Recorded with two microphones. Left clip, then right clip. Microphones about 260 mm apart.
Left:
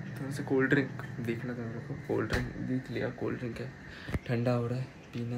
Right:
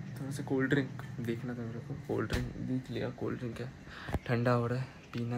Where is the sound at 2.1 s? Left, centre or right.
Centre.